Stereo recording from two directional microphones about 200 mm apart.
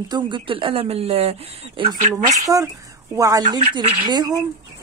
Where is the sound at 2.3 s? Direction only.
15° right (ahead or behind).